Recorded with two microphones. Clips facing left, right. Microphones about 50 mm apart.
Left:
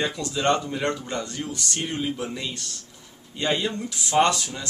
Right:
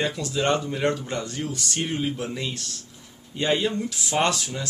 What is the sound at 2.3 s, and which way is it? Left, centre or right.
Speech, centre.